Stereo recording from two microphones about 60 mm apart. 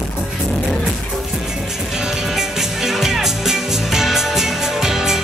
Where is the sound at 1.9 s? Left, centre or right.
Centre.